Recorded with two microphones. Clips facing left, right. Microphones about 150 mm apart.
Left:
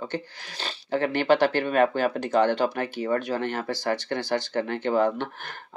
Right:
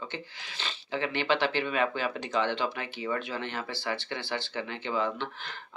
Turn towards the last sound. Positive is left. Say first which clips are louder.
# left 5 dB
turn(degrees=45)  # may be behind; listen again after turning